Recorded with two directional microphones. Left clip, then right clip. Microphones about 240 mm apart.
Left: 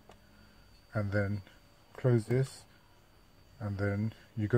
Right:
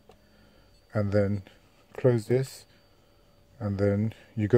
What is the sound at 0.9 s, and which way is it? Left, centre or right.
Speech, right.